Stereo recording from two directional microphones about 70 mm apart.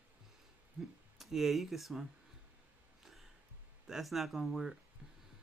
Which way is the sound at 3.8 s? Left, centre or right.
Centre.